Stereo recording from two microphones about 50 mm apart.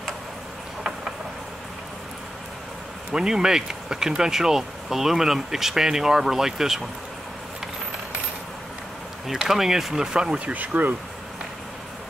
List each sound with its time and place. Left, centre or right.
3.1 s speech: centre
9.3 s speech: centre
10.4 s speech: right